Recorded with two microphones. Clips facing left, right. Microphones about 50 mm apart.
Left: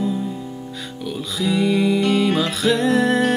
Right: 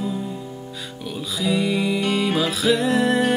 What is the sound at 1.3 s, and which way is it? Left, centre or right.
Music, centre.